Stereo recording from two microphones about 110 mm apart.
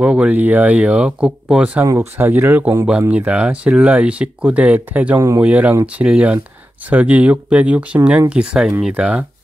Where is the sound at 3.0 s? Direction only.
10° right (ahead or behind).